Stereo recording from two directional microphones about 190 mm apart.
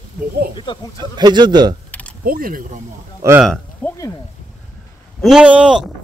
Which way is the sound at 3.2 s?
15° right (ahead or behind).